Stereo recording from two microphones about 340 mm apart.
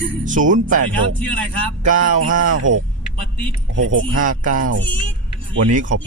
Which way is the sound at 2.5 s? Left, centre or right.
Right.